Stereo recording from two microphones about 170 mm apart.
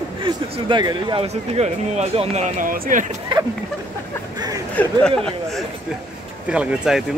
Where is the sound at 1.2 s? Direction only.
40° right (ahead or behind).